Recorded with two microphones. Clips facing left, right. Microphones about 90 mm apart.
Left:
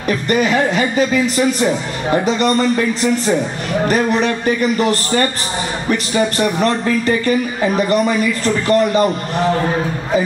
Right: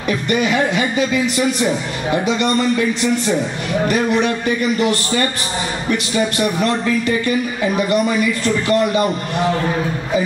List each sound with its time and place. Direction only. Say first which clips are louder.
0.1 s speech: left 2 dB; 40° left (ahead or behind)